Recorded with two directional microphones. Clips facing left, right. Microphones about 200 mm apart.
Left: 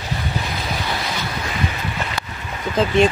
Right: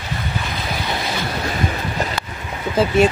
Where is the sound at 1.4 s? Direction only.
40° right (ahead or behind).